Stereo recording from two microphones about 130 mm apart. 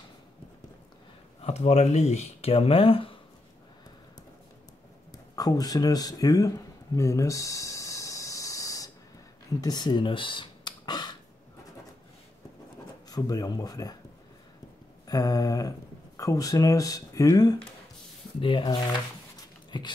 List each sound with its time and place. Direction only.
1.4 s speech: 60° left (ahead or behind)
5.1 s a sound: 30° left (ahead or behind)
9.6 s speech: 30° left (ahead or behind)
13.1 s speech: 30° left (ahead or behind)
15.0 s speech: 30° left (ahead or behind)
18.4 s speech: 40° left (ahead or behind)